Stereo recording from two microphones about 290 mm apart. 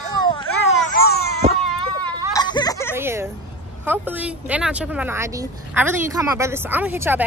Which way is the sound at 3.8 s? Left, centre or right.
Centre.